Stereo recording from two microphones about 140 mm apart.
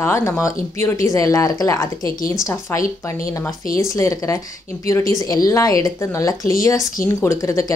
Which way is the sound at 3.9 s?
25° left (ahead or behind).